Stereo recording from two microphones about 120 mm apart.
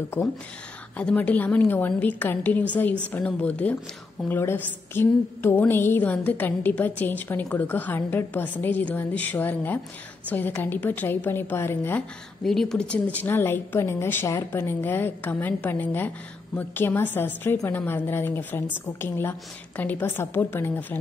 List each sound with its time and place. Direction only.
0.9 s a woman's voice: 10° left (ahead or behind)
12.4 s a woman's voice: 5° left (ahead or behind); by 21.0 s 20° left (ahead or behind)